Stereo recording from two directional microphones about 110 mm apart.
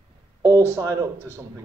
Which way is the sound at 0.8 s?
35° right (ahead or behind).